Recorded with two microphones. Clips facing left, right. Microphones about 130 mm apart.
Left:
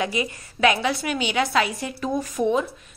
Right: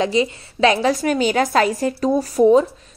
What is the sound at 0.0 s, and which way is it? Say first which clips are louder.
A woman's voice: right 7 dB; 30° right (ahead or behind).